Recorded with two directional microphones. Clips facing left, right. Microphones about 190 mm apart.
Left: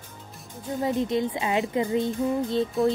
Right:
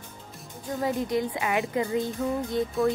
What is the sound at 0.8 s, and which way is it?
A woman's voice, 25° left (ahead or behind).